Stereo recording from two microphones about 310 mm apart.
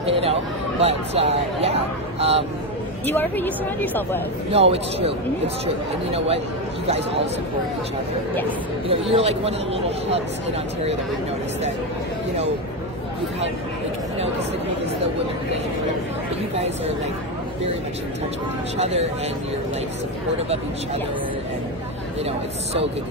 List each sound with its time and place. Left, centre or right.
0.0 s speech: centre
3.1 s a woman's voice: centre
4.5 s speech: centre
6.1 s speech: centre
9.1 s speech: centre
16.5 s speech: right
18.8 s speech: centre